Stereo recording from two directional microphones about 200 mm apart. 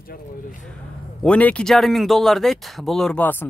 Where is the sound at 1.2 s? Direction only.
5° left (ahead or behind).